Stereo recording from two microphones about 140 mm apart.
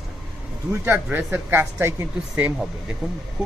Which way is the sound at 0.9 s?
10° right (ahead or behind).